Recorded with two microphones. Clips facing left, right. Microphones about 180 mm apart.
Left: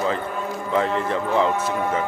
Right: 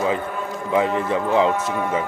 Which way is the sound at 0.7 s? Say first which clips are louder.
Right 2 dB; 15° right (ahead or behind).